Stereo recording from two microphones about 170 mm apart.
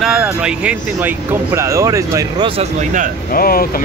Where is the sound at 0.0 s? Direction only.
5° right (ahead or behind); by 2.4 s 20° right (ahead or behind).